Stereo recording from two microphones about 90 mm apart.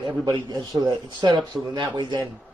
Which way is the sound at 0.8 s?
55° right (ahead or behind).